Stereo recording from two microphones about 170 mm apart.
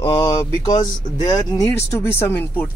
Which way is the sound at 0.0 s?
20° left (ahead or behind).